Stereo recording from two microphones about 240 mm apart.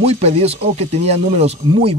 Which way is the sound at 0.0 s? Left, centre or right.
Right.